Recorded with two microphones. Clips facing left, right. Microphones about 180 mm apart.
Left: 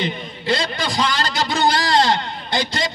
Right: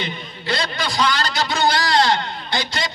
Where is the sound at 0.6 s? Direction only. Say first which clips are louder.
Even; 25° left (ahead or behind).